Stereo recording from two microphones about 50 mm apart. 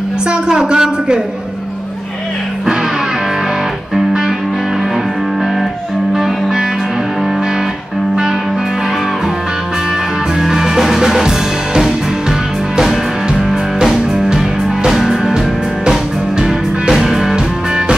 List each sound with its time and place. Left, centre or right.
0.3 s a man's voice: centre
6.1 s music: centre
10.4 s music: centre
15.9 s music: centre